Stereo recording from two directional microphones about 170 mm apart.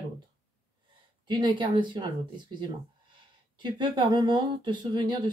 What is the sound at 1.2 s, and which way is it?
Speech, 30° right (ahead or behind).